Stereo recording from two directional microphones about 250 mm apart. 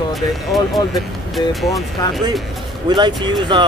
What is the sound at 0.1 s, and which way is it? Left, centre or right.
Speech, centre.